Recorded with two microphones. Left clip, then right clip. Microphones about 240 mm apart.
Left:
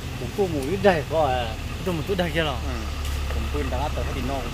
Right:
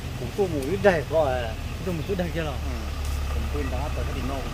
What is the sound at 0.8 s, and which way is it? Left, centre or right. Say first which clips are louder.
Speech: left 1 dB; left.